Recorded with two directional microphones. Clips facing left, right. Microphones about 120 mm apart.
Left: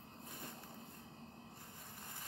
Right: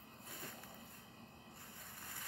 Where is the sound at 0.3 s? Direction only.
25° left (ahead or behind).